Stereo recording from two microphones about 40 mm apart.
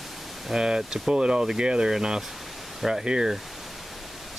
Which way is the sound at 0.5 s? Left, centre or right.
Centre.